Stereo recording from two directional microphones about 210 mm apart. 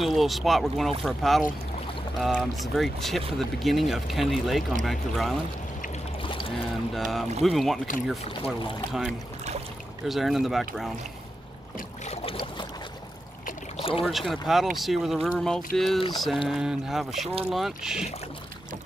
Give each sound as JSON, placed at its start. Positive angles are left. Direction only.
{"t": 0.0, "sound": "speech", "side_deg": 0}
{"t": 6.2, "sound": "boat", "side_deg": 25}
{"t": 6.9, "sound": "speech", "side_deg": 0}
{"t": 12.1, "sound": "boat", "side_deg": 30}
{"t": 13.7, "sound": "boat", "side_deg": 25}
{"t": 14.0, "sound": "speech", "side_deg": 0}